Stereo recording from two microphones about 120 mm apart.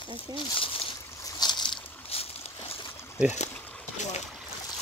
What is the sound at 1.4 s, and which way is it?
Boat, 35° left (ahead or behind).